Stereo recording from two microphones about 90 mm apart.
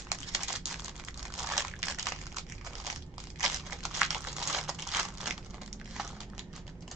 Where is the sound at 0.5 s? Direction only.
5° right (ahead or behind).